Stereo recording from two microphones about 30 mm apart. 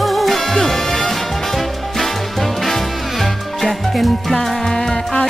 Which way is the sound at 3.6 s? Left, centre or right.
Centre.